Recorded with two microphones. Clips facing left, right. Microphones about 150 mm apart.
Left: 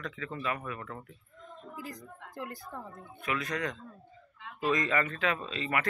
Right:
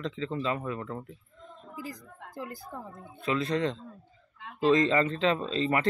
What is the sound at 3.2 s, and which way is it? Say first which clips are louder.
A man's voice: right 6 dB; 25° right (ahead or behind).